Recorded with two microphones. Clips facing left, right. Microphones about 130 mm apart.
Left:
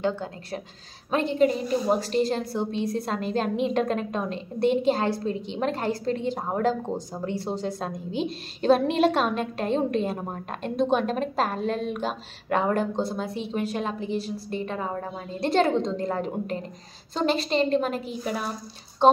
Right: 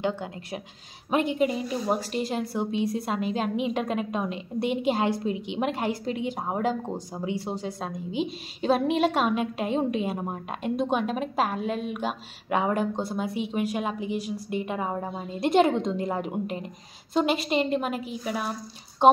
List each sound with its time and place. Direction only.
0.0 s a woman's voice: 15° right (ahead or behind)